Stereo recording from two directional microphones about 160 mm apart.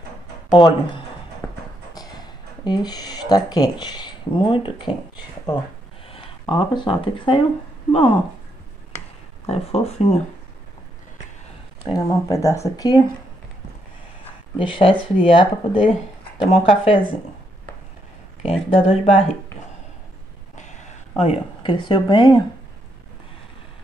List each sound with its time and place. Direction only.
0.5 s speech: 30° left (ahead or behind)
1.4 s a sound: 5° left (ahead or behind)
2.0 s speech: 25° left (ahead or behind)
9.5 s speech: 40° left (ahead or behind)
11.9 s speech: 20° left (ahead or behind)
14.6 s speech: 35° left (ahead or behind)
18.7 s speech: 35° left (ahead or behind)
20.5 s a sound: 50° left (ahead or behind); by 22.4 s 30° left (ahead or behind)